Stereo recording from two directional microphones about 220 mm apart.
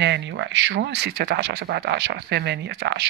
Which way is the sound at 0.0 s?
50° right (ahead or behind).